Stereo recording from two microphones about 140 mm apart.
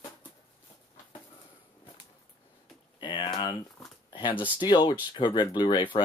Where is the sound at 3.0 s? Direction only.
35° left (ahead or behind).